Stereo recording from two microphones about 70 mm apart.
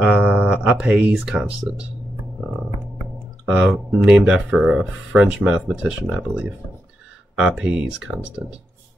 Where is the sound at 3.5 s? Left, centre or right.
Centre.